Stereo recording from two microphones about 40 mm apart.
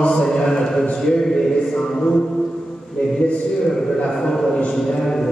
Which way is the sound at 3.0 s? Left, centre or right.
Centre.